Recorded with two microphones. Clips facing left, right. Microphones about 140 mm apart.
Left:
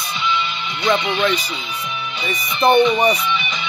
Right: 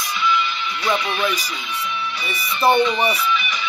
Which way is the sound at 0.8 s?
30° left (ahead or behind).